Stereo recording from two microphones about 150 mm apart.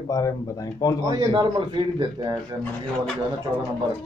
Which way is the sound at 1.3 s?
30° right (ahead or behind).